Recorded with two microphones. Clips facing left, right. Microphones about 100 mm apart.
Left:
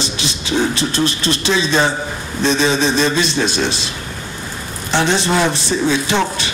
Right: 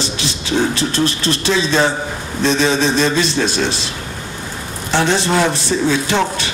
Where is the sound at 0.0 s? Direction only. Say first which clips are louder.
Right 1 dB; 20° left (ahead or behind).